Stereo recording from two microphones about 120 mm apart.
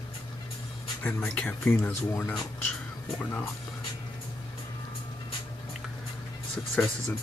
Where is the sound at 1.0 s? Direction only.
15° left (ahead or behind).